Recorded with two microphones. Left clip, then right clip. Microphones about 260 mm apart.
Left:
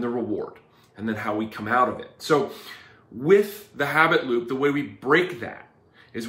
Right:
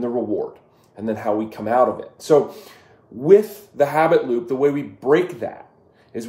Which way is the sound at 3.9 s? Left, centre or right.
Centre.